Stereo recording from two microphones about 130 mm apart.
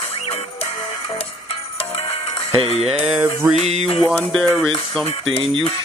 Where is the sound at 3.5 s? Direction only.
65° right (ahead or behind).